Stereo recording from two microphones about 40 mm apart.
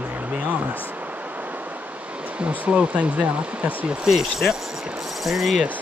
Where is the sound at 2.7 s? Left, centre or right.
Right.